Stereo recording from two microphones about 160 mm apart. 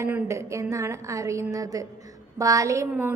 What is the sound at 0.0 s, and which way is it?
A woman's voice, 20° right (ahead or behind).